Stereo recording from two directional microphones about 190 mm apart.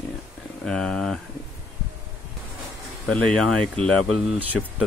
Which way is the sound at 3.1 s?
5° left (ahead or behind).